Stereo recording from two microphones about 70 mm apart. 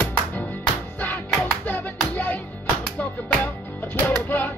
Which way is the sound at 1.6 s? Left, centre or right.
Left.